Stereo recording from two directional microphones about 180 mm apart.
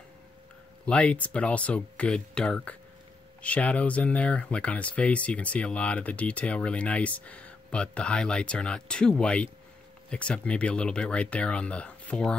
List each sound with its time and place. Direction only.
0.8 s speech: 5° left (ahead or behind)